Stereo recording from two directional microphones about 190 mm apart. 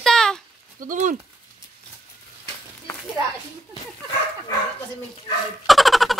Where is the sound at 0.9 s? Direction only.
45° right (ahead or behind).